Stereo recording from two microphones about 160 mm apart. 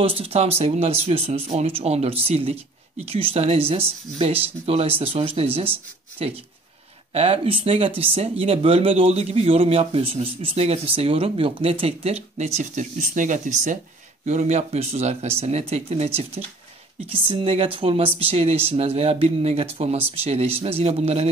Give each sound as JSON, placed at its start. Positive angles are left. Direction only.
{"t": 0.0, "sound": "speech", "side_deg": -35}